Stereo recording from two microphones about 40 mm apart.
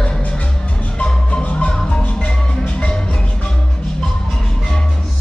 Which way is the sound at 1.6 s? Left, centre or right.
Left.